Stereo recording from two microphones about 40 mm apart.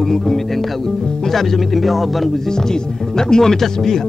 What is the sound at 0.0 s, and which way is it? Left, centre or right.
Speech, centre.